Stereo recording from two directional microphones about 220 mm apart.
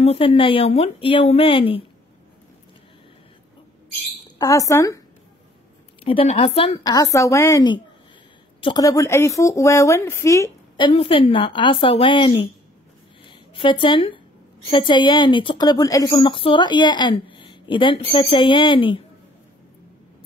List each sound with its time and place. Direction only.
0.0 s a woman's voice: 25° left (ahead or behind)
4.4 s a woman's voice: 15° left (ahead or behind)
6.0 s a woman's voice: 25° left (ahead or behind)
6.8 s a woman's voice: 15° left (ahead or behind)
13.2 s a sound: 20° left (ahead or behind)
14.7 s a woman's voice: 20° left (ahead or behind)